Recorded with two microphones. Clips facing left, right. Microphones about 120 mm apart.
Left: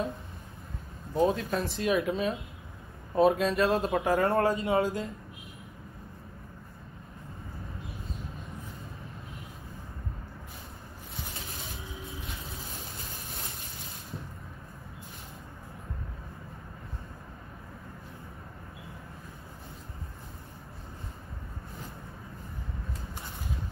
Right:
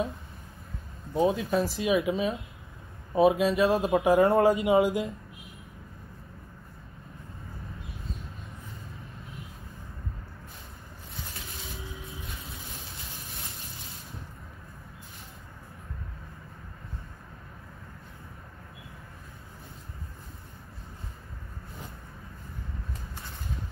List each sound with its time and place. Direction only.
1.1 s speech: centre (ahead or behind)
4.0 s speech: 20° right (ahead or behind)